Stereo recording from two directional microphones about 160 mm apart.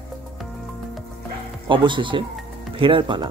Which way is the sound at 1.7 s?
30° right (ahead or behind).